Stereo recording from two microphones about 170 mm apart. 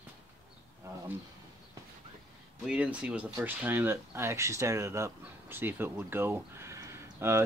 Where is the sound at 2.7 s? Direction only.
10° right (ahead or behind).